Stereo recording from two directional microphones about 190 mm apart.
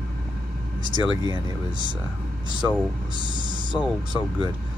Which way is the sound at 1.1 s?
20° right (ahead or behind).